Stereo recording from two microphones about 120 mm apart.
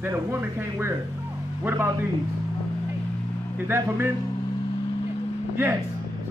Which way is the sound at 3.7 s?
20° right (ahead or behind).